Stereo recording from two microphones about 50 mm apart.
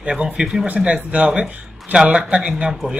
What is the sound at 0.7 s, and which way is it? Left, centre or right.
Speech, right.